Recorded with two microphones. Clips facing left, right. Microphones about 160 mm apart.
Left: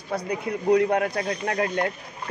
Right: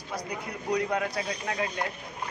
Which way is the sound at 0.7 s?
55° left (ahead or behind).